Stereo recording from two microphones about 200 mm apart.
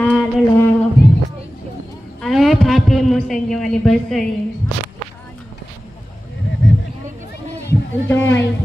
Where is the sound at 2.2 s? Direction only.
Centre (ahead or behind).